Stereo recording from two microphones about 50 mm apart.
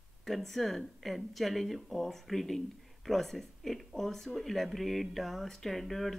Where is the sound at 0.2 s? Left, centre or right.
Centre.